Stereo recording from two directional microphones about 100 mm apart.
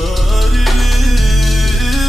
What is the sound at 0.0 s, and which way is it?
Music, centre (ahead or behind).